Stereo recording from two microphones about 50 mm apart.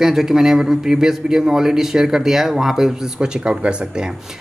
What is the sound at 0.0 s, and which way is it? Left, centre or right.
A man's voice, centre.